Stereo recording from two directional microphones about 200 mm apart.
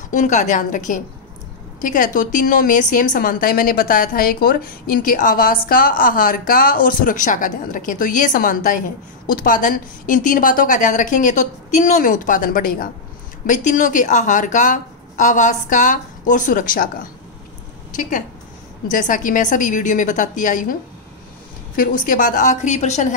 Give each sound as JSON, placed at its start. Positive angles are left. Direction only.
{"t": 0.1, "sound": "a woman's voice", "side_deg": 40}
{"t": 18.9, "sound": "a woman's voice", "side_deg": 40}
{"t": 21.7, "sound": "a woman's voice", "side_deg": 45}